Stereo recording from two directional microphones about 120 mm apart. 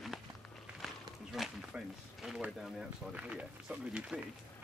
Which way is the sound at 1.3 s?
Centre (ahead or behind).